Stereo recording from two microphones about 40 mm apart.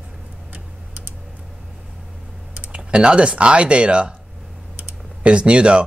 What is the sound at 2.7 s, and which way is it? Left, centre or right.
Speech, right.